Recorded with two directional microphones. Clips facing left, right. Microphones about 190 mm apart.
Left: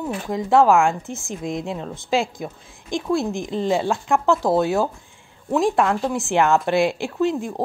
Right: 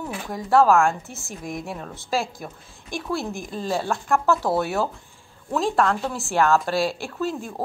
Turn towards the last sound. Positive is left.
turn(degrees=15)  # may be behind; listen again after turning